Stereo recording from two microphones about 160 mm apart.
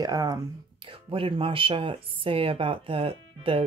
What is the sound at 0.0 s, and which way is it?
Speech, 25° right (ahead or behind).